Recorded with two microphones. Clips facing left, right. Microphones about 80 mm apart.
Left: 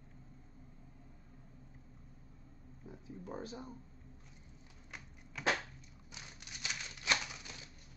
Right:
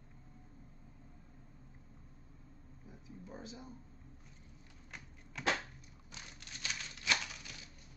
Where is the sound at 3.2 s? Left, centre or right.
Left.